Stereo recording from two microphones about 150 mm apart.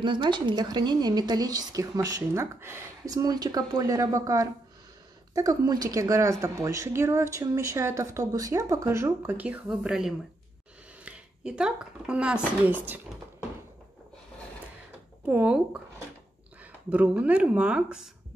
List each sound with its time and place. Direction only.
0.0 s a woman's voice: 30° right (ahead or behind); by 13.0 s 10° right (ahead or behind)
15.2 s speech: 10° right (ahead or behind)
16.9 s speech: 10° right (ahead or behind)